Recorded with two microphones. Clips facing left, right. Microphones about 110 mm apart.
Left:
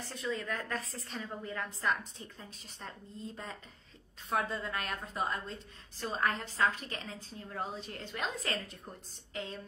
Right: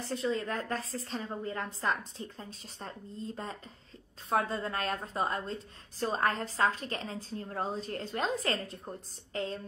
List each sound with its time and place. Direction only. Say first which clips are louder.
0.0 s a woman's voice: right 5 dB; 30° right (ahead or behind)